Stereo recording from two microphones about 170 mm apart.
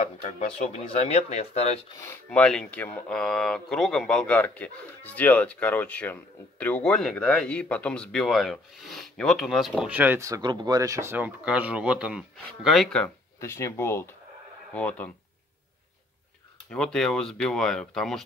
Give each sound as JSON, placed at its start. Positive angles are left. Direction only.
{"t": 0.7, "sound": "speech", "side_deg": 40}
{"t": 2.0, "sound": "speech", "side_deg": 10}
{"t": 13.4, "sound": "speech", "side_deg": 15}
{"t": 16.7, "sound": "speech", "side_deg": 5}